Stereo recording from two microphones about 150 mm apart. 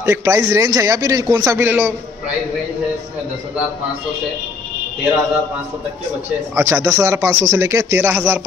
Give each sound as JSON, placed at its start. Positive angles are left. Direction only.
{"t": 0.0, "sound": "a man's voice", "side_deg": -20}
{"t": 6.5, "sound": "a man's voice", "side_deg": -20}